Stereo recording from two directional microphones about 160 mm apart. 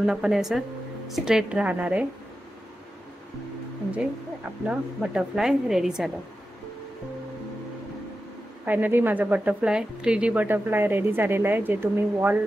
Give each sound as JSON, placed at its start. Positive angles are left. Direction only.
{"t": 0.0, "sound": "speech", "side_deg": -5}
{"t": 4.6, "sound": "speech", "side_deg": -5}
{"t": 8.6, "sound": "a woman's voice", "side_deg": -10}